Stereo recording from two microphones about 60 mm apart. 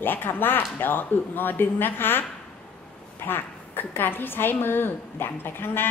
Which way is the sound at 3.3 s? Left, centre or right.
Left.